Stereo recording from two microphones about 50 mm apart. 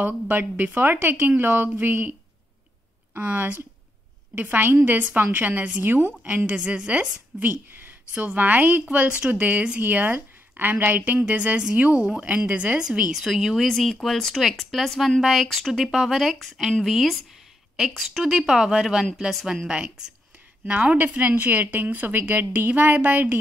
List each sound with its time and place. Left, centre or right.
0.0 s a woman's voice: right
3.2 s speech: right
6.2 s a woman's voice: right
13.1 s speech: centre
13.7 s a woman's voice: centre; by 23.3 s right